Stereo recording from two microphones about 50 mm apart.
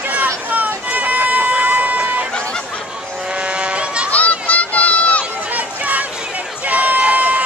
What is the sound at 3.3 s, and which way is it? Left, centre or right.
Goat, right.